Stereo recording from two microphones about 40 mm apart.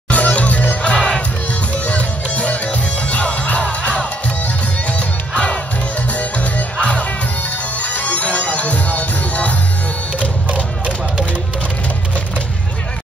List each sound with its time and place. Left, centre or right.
0.1 s music: left
5.3 s battle cry: left
6.8 s music: left